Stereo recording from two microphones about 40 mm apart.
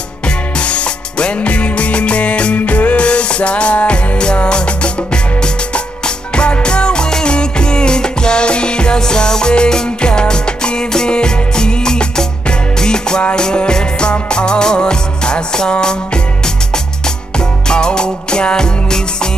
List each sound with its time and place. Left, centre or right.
0.6 s music: left
2.5 s music: left; by 18.9 s centre